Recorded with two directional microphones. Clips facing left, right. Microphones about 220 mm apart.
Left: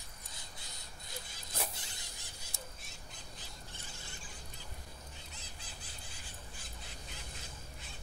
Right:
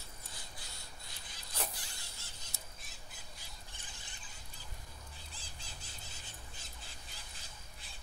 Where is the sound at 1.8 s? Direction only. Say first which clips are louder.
Left 2 dB; 15° left (ahead or behind).